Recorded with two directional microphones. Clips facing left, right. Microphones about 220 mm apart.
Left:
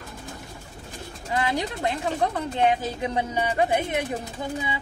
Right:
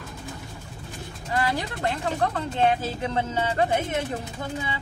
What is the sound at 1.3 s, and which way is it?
Speech, 20° left (ahead or behind).